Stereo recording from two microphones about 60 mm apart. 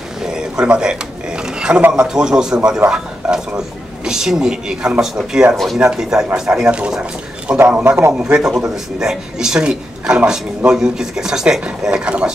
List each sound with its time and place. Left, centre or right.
0.2 s a sound: centre
1.8 s speech: right
2.0 s a man's voice: centre
7.8 s a man's voice: right
8.1 s speech: centre